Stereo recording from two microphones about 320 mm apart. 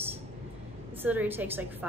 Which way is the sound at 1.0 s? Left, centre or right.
Centre.